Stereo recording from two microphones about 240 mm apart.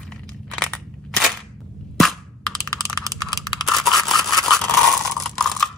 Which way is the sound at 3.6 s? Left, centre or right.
Centre.